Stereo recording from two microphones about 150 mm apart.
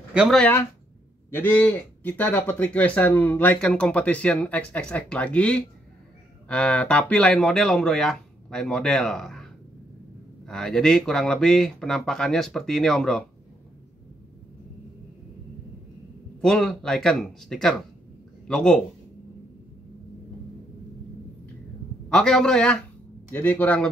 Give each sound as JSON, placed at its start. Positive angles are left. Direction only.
{"t": 0.1, "sound": "speech", "side_deg": -5}
{"t": 0.4, "sound": "speech", "side_deg": 15}
{"t": 16.3, "sound": "speech", "side_deg": 5}
{"t": 22.1, "sound": "speech", "side_deg": 5}